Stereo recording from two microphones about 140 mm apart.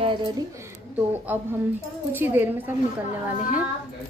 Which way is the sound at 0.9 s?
15° right (ahead or behind).